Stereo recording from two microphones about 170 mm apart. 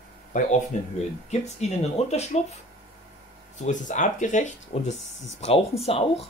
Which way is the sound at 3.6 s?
45° left (ahead or behind).